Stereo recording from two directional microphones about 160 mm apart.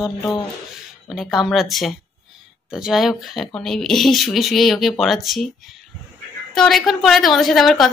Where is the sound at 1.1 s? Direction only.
Centre (ahead or behind).